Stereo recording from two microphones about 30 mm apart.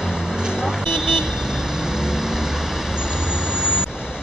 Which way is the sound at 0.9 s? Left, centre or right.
Right.